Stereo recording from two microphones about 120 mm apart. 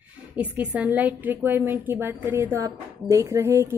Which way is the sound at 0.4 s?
10° right (ahead or behind).